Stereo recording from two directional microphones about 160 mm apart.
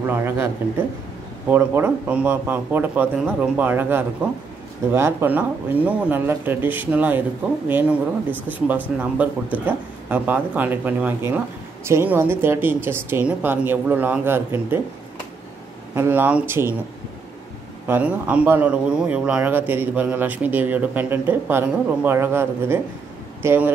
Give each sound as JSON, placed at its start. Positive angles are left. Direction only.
{"t": 0.1, "sound": "speech", "side_deg": -15}
{"t": 15.9, "sound": "speech", "side_deg": -10}
{"t": 17.8, "sound": "speech", "side_deg": -10}